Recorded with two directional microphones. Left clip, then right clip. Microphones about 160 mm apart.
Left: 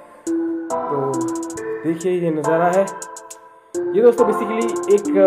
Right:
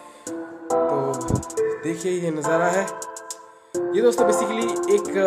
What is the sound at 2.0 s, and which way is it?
Speech, 20° right (ahead or behind).